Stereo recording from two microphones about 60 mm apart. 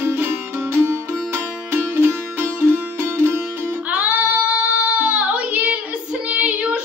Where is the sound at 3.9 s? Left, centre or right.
Right.